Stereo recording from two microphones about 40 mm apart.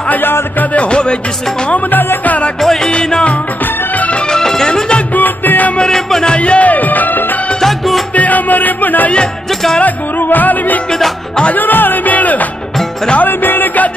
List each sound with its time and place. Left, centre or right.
0.7 s music: left
1.9 s music: left
2.6 s music: centre
2.9 s music: left
4.3 s music: centre
5.1 s music: left
5.9 s music: centre
6.2 s music: left
7.6 s music: centre
8.1 s music: left
13.2 s music: left